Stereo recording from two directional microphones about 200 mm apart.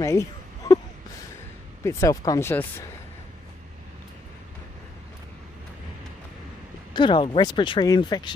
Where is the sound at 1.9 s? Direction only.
15° left (ahead or behind).